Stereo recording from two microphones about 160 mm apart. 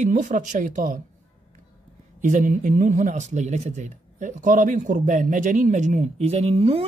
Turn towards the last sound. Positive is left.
turn(degrees=-35)  # may be behind; listen again after turning